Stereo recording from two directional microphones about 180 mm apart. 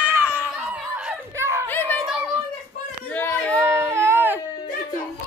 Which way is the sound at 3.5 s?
15° right (ahead or behind).